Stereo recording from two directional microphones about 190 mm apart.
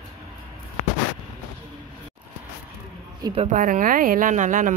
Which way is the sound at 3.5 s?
45° right (ahead or behind).